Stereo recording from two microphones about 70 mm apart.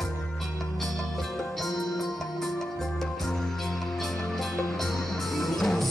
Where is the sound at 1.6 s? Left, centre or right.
Centre.